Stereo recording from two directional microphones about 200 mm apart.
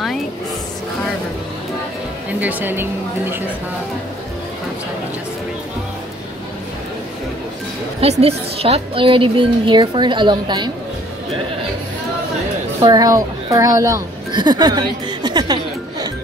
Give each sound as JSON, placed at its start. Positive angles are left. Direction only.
{"t": 2.4, "sound": "a woman's voice", "side_deg": -10}
{"t": 8.0, "sound": "a woman's voice", "side_deg": -30}
{"t": 12.8, "sound": "a woman's voice", "side_deg": -20}